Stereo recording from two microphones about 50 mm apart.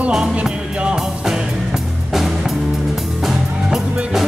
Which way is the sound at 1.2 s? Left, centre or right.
Centre.